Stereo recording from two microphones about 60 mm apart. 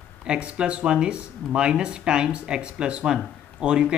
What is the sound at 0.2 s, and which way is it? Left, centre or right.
A man's voice, centre.